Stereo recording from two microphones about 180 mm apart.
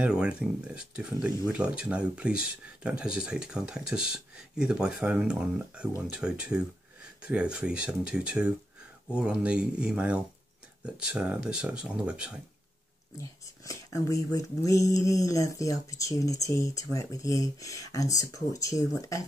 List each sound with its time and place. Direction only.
0.0 s speech: 5° right (ahead or behind)
13.2 s speech: 15° left (ahead or behind)